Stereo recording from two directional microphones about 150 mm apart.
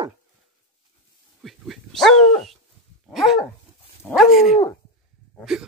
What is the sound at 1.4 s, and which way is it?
Speech, centre (ahead or behind).